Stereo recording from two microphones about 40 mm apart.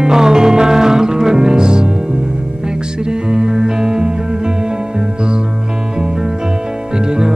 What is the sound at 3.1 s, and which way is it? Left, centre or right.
Music, centre.